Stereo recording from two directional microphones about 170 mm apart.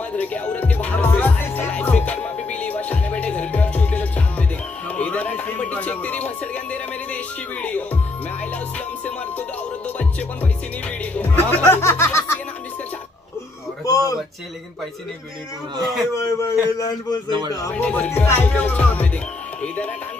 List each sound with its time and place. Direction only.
0.1 s music: 10° left (ahead or behind)
9.8 s music: 10° left (ahead or behind)
13.8 s a sound: 20° left (ahead or behind)
16.2 s a man's voice: 20° left (ahead or behind)
17.3 s speech: 25° right (ahead or behind)
17.7 s speech: 10° left (ahead or behind)
19.6 s a sound: 10° left (ahead or behind)